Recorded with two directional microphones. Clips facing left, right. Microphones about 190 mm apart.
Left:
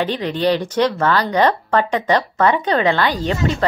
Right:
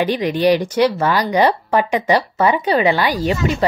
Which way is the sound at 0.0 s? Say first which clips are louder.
Right 3 dB; 10° right (ahead or behind).